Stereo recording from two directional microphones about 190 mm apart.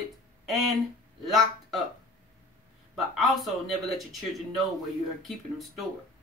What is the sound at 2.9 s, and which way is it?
Speech, centre (ahead or behind).